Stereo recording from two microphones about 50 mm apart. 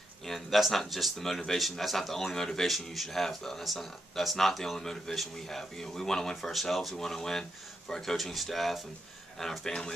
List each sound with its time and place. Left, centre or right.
0.2 s speech: centre
9.7 s speech: centre